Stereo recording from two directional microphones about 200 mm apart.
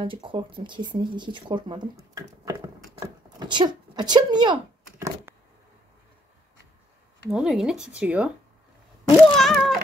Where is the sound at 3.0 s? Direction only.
20° right (ahead or behind).